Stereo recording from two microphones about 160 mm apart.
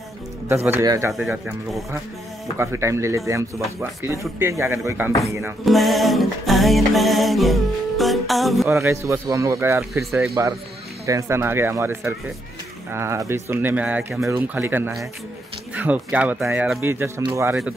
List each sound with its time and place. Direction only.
0.7 s speech: 20° right (ahead or behind)
1.3 s music: centre (ahead or behind)
2.5 s speech: 15° right (ahead or behind)
5.7 s music: centre (ahead or behind)
8.6 s speech: 15° right (ahead or behind)